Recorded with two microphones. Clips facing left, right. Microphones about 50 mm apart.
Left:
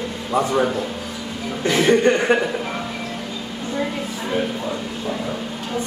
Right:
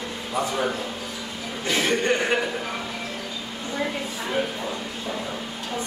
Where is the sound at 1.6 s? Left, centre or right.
Left.